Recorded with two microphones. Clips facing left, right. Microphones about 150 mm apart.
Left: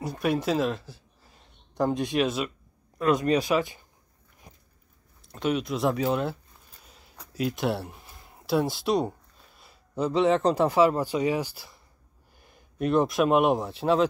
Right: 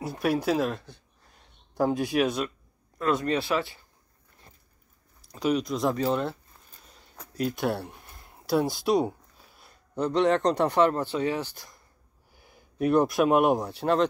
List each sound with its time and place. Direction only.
0.0 s speech: centre (ahead or behind)
3.0 s speech: 15° left (ahead or behind)
4.5 s a sound: 15° left (ahead or behind)
5.2 s speech: centre (ahead or behind)